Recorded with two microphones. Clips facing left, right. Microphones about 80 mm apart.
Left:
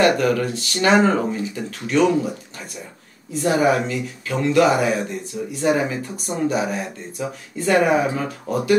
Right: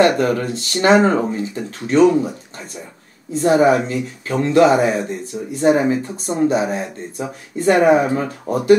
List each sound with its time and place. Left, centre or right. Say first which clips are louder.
0.0 s speech: right 2 dB; right
3.3 s speech: right 4 dB; right